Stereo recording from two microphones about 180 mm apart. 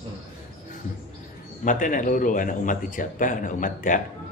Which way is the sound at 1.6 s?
45° left (ahead or behind).